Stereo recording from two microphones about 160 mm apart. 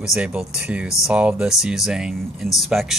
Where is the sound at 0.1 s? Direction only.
5° right (ahead or behind).